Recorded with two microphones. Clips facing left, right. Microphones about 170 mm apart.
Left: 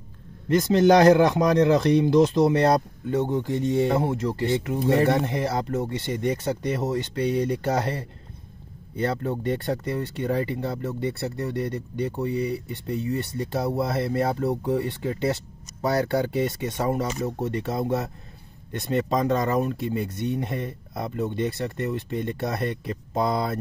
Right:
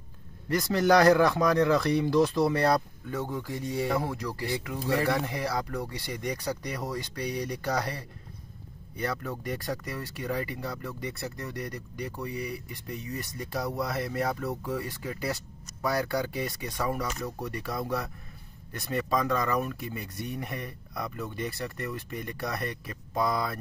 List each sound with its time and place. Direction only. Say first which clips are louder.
0.5 s speech: left 6 dB; 25° left (ahead or behind)